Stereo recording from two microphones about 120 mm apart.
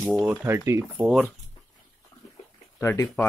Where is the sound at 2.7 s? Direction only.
20° left (ahead or behind).